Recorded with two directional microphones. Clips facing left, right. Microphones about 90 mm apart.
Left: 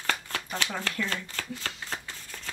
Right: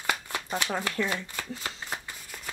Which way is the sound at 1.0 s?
15° right (ahead or behind).